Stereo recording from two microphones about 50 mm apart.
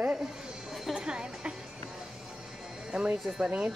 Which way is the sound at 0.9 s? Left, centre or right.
Centre.